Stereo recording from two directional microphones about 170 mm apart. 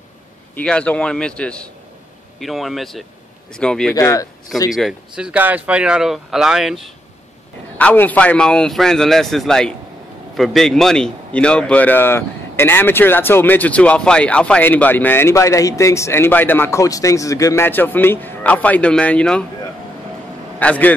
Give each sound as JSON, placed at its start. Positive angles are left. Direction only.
{"t": 0.6, "sound": "a man's voice", "side_deg": 5}
{"t": 3.9, "sound": "speech", "side_deg": 20}
{"t": 4.7, "sound": "speech", "side_deg": -5}
{"t": 7.7, "sound": "a man's voice", "side_deg": 10}
{"t": 20.5, "sound": "a man's voice", "side_deg": 10}